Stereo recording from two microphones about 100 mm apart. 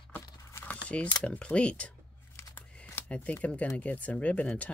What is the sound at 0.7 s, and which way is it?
Keys jangling, 10° left (ahead or behind).